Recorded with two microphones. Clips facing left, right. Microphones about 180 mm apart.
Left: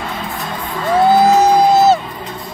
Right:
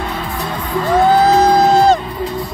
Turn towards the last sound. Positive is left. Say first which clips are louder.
# even
turn(degrees=10)  # may be behind; listen again after turning